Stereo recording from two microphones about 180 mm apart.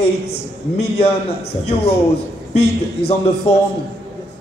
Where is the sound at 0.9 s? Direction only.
35° left (ahead or behind).